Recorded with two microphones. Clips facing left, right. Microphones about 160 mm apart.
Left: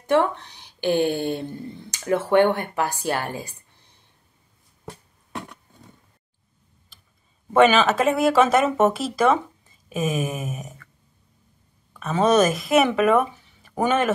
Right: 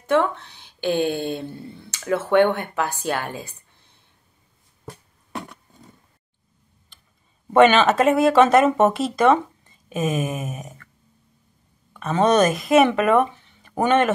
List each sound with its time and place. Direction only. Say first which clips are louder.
0.0 s speech: even; 15° left (ahead or behind)
7.5 s speech: right 2 dB; centre (ahead or behind)
11.9 s speech: right 1 dB; 5° left (ahead or behind)